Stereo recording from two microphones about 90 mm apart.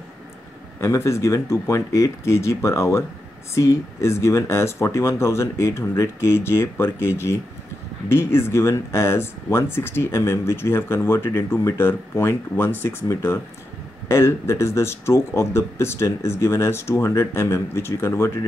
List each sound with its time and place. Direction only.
0.7 s speech: 30° left (ahead or behind)